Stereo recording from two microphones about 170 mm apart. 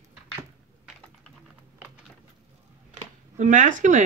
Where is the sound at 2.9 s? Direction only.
50° right (ahead or behind).